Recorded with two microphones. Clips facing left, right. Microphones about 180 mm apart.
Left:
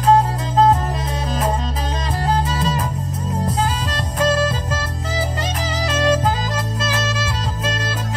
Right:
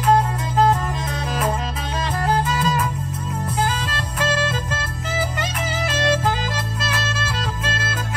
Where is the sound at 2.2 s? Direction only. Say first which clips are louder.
Even; 30° left (ahead or behind).